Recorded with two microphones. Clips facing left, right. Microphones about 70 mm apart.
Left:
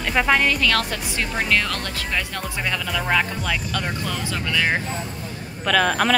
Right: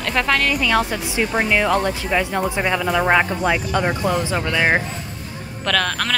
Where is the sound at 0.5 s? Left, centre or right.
Centre.